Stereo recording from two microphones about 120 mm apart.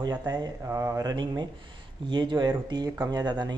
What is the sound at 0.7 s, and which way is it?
Speech, 25° right (ahead or behind).